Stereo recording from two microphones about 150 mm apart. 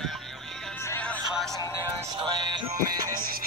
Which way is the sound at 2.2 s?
30° right (ahead or behind).